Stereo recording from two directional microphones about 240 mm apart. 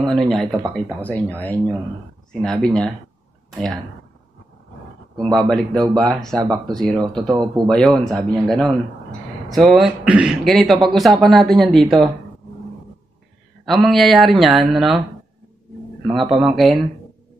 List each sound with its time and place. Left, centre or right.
0.1 s speech: centre
3.5 s speech: centre
5.2 s speech: centre
7.2 s a man's voice: centre
7.6 s speech: centre
13.7 s speech: centre
16.1 s speech: right
16.3 s speech: centre